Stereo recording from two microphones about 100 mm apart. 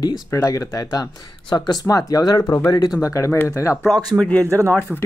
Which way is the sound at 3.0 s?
30° left (ahead or behind).